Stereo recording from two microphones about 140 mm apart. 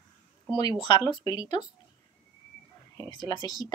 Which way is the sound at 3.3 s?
25° left (ahead or behind).